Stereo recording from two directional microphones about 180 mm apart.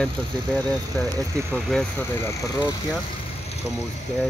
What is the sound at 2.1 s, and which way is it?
Speech, 15° left (ahead or behind).